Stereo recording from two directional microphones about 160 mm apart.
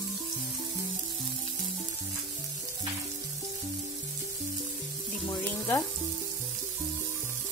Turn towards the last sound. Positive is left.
turn(degrees=20)  # may be behind; listen again after turning